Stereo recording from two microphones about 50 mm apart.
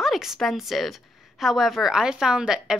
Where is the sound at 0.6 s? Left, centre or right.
Centre.